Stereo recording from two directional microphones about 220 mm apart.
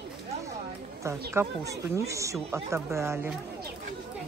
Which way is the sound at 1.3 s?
15° right (ahead or behind).